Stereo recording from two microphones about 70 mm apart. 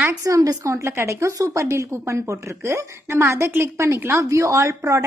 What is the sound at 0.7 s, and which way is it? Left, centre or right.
Speech, right.